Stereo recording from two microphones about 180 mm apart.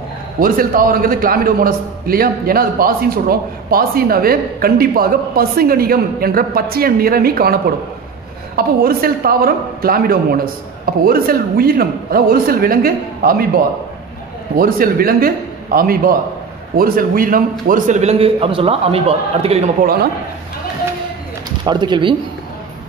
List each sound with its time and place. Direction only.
0.4 s a man's voice: 50° right (ahead or behind)
14.6 s a man's voice: 55° right (ahead or behind); by 19.6 s 35° right (ahead or behind)
19.8 s a man's voice: 55° right (ahead or behind)
21.6 s speech: 25° right (ahead or behind)